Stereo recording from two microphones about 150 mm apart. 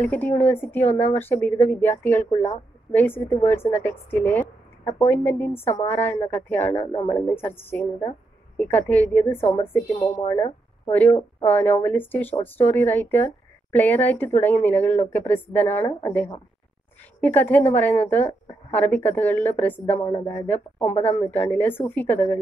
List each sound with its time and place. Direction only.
0.0 s a woman's voice: 10° left (ahead or behind)
6.9 s speech: 30° left (ahead or behind)
7.2 s a woman's voice: 15° left (ahead or behind)
17.2 s a woman's voice: 10° left (ahead or behind)
20.0 s speech: 30° left (ahead or behind)
20.2 s a woman's voice: 10° left (ahead or behind)